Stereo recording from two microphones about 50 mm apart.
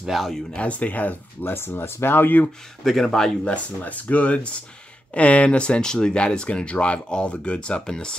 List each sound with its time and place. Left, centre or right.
0.0 s speech: centre
0.6 s speech: left
1.4 s speech: left
2.8 s speech: centre
3.4 s speech: left; by 8.2 s centre